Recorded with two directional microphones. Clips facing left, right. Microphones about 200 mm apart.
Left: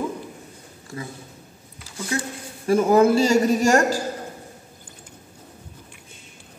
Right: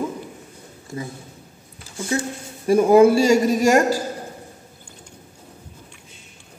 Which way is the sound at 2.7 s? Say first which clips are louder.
Right 3 dB; 15° right (ahead or behind).